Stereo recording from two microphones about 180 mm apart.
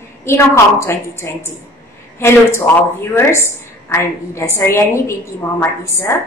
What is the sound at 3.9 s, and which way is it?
A woman's voice, 15° left (ahead or behind).